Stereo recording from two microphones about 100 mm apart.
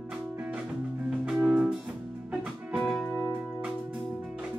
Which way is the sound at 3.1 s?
30° right (ahead or behind).